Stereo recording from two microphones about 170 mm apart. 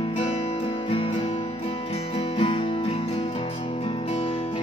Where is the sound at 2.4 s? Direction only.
35° left (ahead or behind).